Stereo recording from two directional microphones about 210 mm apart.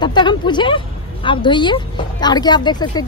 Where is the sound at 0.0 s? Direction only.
20° left (ahead or behind).